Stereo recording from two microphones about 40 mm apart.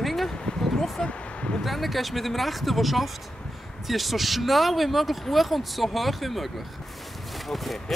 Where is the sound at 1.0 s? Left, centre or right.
Left.